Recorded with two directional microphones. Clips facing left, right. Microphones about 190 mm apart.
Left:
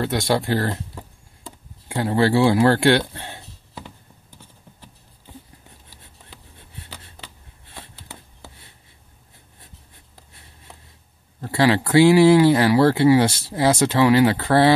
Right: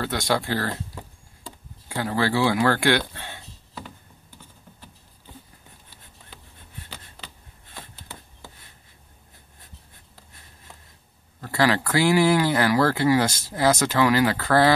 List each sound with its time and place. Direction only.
0.0 s speech: 25° left (ahead or behind)
1.4 s a sound: 25° left (ahead or behind)
11.4 s speech: 25° left (ahead or behind)